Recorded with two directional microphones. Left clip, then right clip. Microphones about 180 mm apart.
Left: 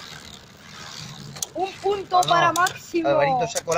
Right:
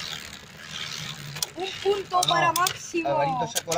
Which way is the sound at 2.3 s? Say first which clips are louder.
Left 3 dB; 30° left (ahead or behind).